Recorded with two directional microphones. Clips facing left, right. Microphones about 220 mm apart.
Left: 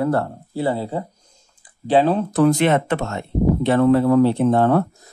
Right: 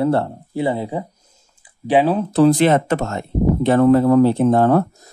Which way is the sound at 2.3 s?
30° right (ahead or behind).